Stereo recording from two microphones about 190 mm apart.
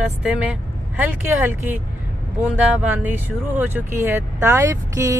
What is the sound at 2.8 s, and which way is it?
Speech, 10° right (ahead or behind).